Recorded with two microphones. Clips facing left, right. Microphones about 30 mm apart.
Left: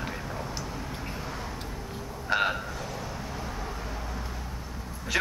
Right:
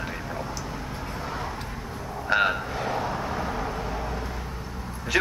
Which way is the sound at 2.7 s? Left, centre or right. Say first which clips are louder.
Right 8 dB; right.